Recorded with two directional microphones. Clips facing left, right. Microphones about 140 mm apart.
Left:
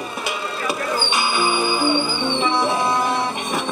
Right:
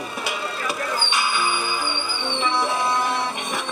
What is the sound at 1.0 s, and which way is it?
Music, 20° left (ahead or behind).